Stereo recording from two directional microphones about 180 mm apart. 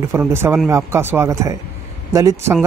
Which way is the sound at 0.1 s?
15° right (ahead or behind).